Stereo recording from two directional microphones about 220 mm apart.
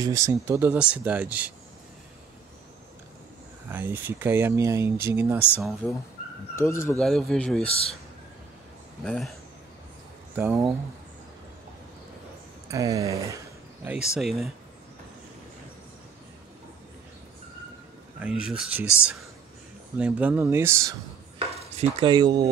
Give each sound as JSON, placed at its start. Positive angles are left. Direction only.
{"t": 0.0, "sound": "speech", "side_deg": -15}
{"t": 3.6, "sound": "speech", "side_deg": -10}
{"t": 5.6, "sound": "a man's voice", "side_deg": 0}
{"t": 6.5, "sound": "speech", "side_deg": 10}
{"t": 7.0, "sound": "a man's voice", "side_deg": 0}
{"t": 7.6, "sound": "speech", "side_deg": 25}
{"t": 9.0, "sound": "a man's voice", "side_deg": 0}
{"t": 10.3, "sound": "speech", "side_deg": -10}
{"t": 12.6, "sound": "speech", "side_deg": -15}
{"t": 14.1, "sound": "a man's voice", "side_deg": 0}
{"t": 18.2, "sound": "a man's voice", "side_deg": -5}
{"t": 20.0, "sound": "speech", "side_deg": -5}
{"t": 21.7, "sound": "speech", "side_deg": -20}